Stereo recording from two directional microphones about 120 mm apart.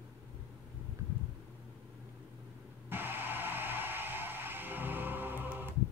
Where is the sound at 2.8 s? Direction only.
15° right (ahead or behind).